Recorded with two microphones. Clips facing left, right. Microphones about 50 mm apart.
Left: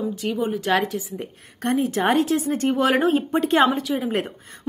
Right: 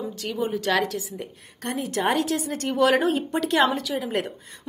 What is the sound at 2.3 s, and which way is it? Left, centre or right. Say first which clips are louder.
A woman's voice: left 5 dB; left.